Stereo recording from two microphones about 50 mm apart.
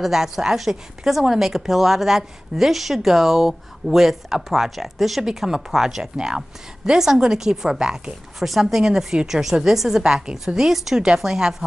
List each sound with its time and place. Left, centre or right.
0.0 s a woman's voice: centre
6.1 s a woman's voice: centre
8.4 s a woman's voice: centre